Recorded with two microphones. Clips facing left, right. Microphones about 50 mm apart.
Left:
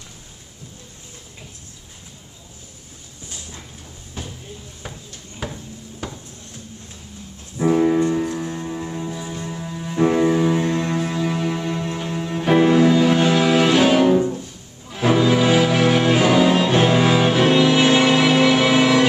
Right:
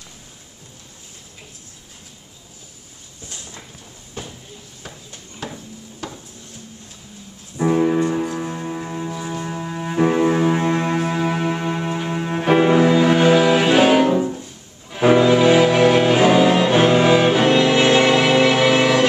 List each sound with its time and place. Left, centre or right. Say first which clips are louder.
5.4 s a sound: left 1 dB; centre
7.5 s music: even; centre; by 9.9 s right
9.9 s cello: even; centre
14.9 s music: right 3 dB; centre